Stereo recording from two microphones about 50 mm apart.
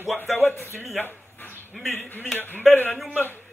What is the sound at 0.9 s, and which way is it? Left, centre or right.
Dog, left.